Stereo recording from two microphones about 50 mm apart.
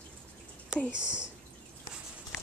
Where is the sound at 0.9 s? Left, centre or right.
Centre.